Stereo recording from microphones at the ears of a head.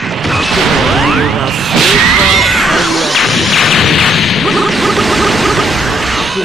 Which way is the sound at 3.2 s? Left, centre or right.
Left.